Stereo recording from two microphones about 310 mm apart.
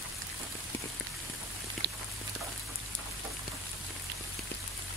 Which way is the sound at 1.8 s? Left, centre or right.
Right.